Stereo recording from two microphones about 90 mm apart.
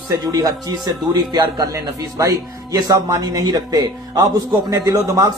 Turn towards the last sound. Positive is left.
turn(degrees=-50)  # may be behind; listen again after turning